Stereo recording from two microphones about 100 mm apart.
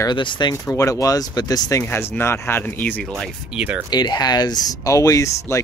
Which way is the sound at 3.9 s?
45° left (ahead or behind).